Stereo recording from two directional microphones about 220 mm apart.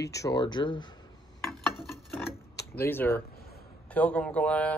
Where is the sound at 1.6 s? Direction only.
Centre (ahead or behind).